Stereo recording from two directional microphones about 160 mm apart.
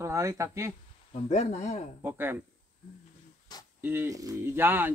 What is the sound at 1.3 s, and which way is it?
Speech, 45° left (ahead or behind).